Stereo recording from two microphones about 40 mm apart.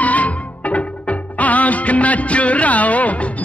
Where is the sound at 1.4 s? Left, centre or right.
Left.